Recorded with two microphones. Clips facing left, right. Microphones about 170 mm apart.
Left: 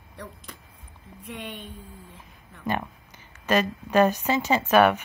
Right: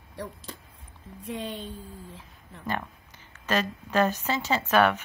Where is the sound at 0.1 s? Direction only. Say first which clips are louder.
Right 3 dB; 30° right (ahead or behind).